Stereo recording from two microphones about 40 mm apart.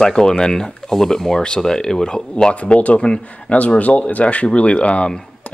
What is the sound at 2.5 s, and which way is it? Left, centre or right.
Speech, left.